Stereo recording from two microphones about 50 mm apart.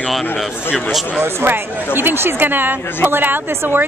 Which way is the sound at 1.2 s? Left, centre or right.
Right.